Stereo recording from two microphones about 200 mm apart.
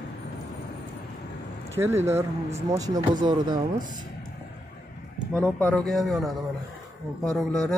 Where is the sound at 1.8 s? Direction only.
15° right (ahead or behind).